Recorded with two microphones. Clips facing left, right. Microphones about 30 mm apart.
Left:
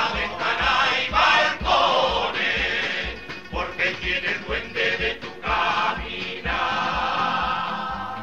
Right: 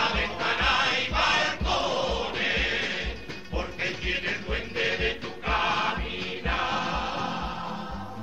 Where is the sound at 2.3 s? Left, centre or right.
Centre; by 8.0 s left.